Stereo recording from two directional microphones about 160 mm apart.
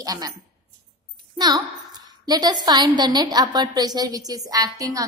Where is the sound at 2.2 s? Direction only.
25° right (ahead or behind).